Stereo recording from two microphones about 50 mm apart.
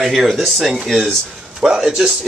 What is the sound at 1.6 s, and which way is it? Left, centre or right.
Speech, centre.